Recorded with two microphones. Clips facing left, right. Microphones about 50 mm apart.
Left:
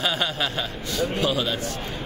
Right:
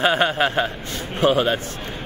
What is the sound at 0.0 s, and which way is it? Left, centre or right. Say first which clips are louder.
A man's voice: right 7 dB; right.